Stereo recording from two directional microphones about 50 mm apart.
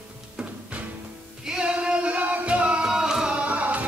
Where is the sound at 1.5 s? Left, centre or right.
Centre.